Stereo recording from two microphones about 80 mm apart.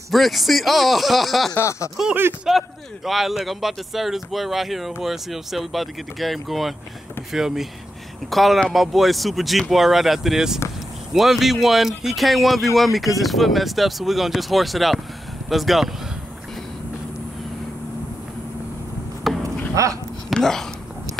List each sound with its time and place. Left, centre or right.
0.1 s speech: centre
1.6 s speech: left
2.5 s speech: centre
19.4 s a sound: right
20.3 s speech: centre